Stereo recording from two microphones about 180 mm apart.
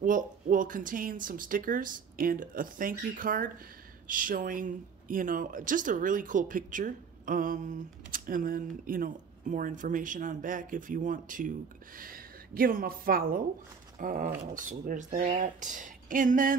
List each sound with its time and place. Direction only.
0.0 s speech: 50° right (ahead or behind)